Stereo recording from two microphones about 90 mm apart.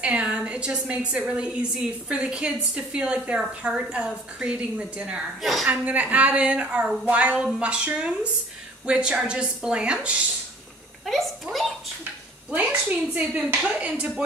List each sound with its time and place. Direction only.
0.0 s a woman's voice: 10° right (ahead or behind)
11.1 s a child's voice: centre (ahead or behind)
12.4 s a woman's voice: 15° right (ahead or behind)